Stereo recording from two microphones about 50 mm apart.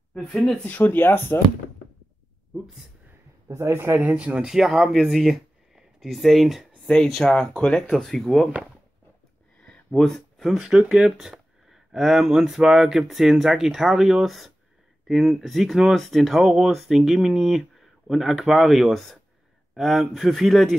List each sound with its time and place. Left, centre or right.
0.2 s speech: centre
0.7 s speech: left
3.4 s a man's voice: right
3.7 s a man's voice: right
4.0 s speech: right
4.4 s speech: centre
7.2 s speech: centre
8.0 s speech: centre
9.9 s speech: centre
10.6 s speech: centre